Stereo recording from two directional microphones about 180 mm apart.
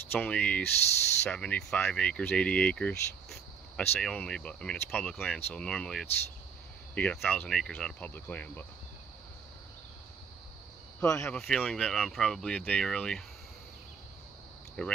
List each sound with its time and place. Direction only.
0.1 s speech: 10° left (ahead or behind)
11.1 s speech: 15° left (ahead or behind)
11.3 s speech: 5° left (ahead or behind)
14.8 s speech: 5° left (ahead or behind)